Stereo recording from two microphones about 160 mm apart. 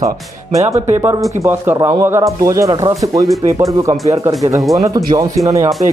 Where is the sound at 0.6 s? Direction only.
45° right (ahead or behind).